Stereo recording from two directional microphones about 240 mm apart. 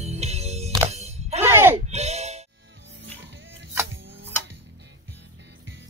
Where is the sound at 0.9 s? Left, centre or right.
Right.